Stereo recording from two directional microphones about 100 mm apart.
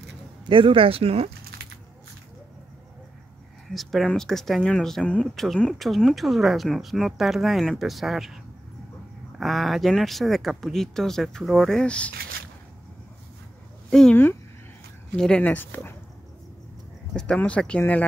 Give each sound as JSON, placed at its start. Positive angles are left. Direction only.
{"t": 0.5, "sound": "speech", "side_deg": -60}
{"t": 3.7, "sound": "speech", "side_deg": 0}
{"t": 9.4, "sound": "speech", "side_deg": 0}
{"t": 13.8, "sound": "speech", "side_deg": 5}
{"t": 15.1, "sound": "speech", "side_deg": 5}
{"t": 15.5, "sound": "speech", "side_deg": 20}
{"t": 17.1, "sound": "speech", "side_deg": 10}